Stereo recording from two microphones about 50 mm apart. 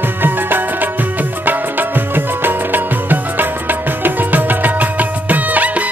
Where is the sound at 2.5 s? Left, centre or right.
Right.